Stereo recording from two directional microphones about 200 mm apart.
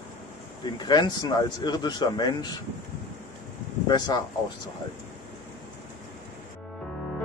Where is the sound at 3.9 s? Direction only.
20° left (ahead or behind).